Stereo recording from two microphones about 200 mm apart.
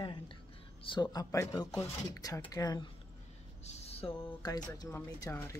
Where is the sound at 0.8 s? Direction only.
20° left (ahead or behind).